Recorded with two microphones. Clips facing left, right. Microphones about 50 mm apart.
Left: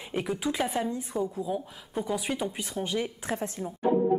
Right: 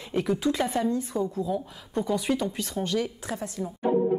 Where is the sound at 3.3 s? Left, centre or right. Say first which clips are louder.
Even; left.